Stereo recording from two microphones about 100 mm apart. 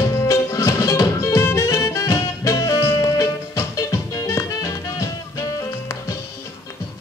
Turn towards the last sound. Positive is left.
turn(degrees=30)  # may be behind; listen again after turning